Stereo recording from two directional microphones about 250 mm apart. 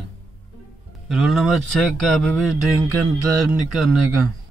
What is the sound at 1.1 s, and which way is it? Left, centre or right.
Speech, centre.